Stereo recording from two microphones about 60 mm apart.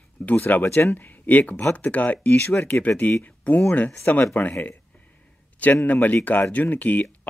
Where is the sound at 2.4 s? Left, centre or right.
Left.